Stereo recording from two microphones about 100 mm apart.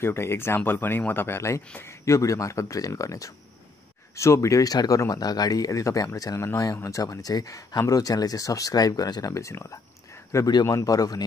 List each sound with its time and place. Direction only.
0.0 s speech: 25° left (ahead or behind)